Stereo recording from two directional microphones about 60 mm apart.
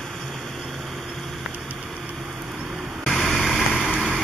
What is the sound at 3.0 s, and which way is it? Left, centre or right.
Vehicle, centre.